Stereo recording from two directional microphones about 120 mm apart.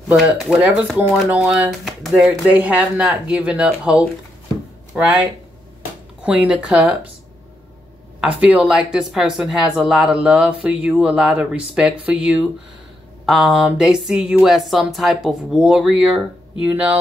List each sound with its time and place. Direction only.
0.1 s speech: centre (ahead or behind)
0.6 s speech: 10° right (ahead or behind)
1.7 s speech: centre (ahead or behind)
2.5 s speech: 15° right (ahead or behind)
6.2 s speech: 10° right (ahead or behind)
8.2 s speech: 10° right (ahead or behind)